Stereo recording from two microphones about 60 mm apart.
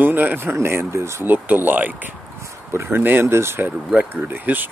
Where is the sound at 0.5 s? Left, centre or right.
Right.